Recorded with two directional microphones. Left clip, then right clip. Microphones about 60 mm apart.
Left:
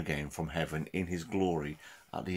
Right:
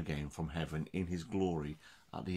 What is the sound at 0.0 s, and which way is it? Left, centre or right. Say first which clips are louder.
Speech: left 6 dB; right.